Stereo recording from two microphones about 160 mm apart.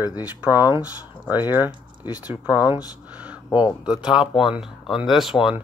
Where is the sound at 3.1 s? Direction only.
10° right (ahead or behind).